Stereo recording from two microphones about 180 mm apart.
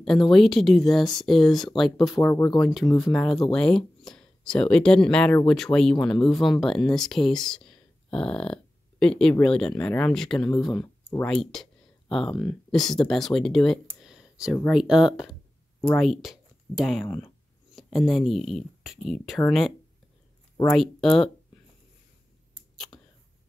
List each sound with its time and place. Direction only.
0.0 s speech: centre (ahead or behind)
10.7 s a sound: 25° left (ahead or behind)
11.1 s speech: 5° left (ahead or behind)